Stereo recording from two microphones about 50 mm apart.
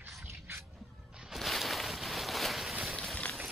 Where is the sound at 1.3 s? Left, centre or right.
Centre.